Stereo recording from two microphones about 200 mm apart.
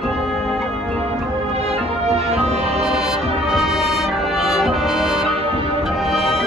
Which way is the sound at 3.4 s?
Centre (ahead or behind).